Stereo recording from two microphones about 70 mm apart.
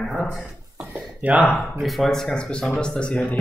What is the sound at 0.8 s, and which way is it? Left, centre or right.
Speech, centre.